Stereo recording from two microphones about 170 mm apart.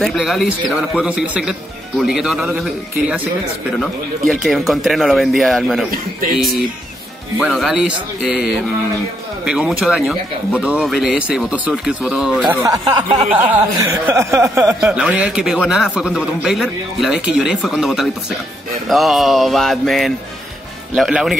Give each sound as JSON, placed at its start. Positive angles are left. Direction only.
{"t": 0.0, "sound": "speech", "side_deg": 0}
{"t": 4.3, "sound": "speech", "side_deg": 0}
{"t": 7.3, "sound": "speech", "side_deg": 0}
{"t": 12.4, "sound": "speech", "side_deg": -20}
{"t": 14.8, "sound": "speech", "side_deg": -5}